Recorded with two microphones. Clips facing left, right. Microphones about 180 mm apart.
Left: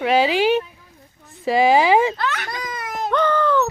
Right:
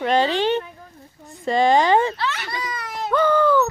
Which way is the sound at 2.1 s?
50° left (ahead or behind).